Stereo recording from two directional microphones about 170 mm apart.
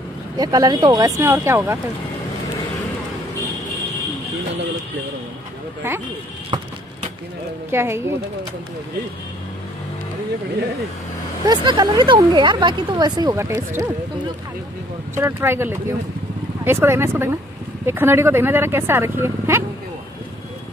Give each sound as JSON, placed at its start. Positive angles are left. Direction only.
{"t": 0.4, "sound": "speech", "side_deg": -20}
{"t": 5.8, "sound": "speech", "side_deg": -15}
{"t": 7.7, "sound": "speech", "side_deg": -15}
{"t": 11.4, "sound": "speech", "side_deg": -25}
{"t": 15.1, "sound": "speech", "side_deg": -15}